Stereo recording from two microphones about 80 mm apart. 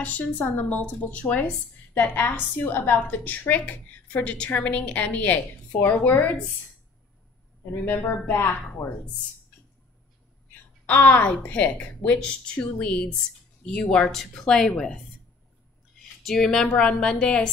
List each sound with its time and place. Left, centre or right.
0.0 s a woman's voice: centre
7.7 s a woman's voice: left
10.9 s a woman's voice: centre
16.0 s a woman's voice: centre